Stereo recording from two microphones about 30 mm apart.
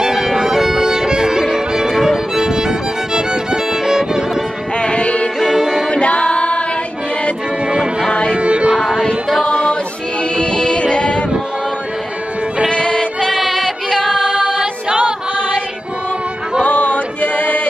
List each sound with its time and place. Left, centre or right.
0.0 s music: centre
1.9 s violin: centre
2.3 s music: right
3.7 s violin: centre
4.7 s music: left
5.4 s music: centre
5.9 s a capella: left
7.6 s music: right
8.4 s a sound: right
10.3 s music: left
12.7 s music: left
13.4 s female singing: centre
14.5 s music: right
16.6 s a sound: left